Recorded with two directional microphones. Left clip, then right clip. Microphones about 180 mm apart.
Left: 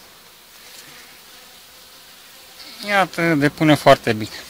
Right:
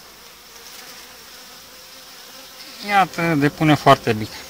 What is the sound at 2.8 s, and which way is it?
Speech, 50° left (ahead or behind).